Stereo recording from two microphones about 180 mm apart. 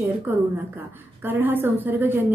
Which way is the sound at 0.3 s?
10° right (ahead or behind).